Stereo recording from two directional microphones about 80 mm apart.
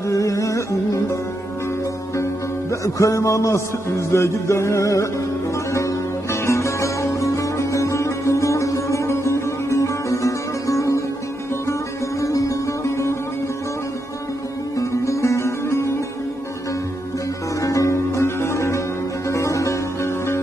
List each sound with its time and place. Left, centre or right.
0.1 s music: left
2.7 s a man's voice: left
6.4 s music: left
12.2 s music: left
14.8 s music: left
17.6 s music: left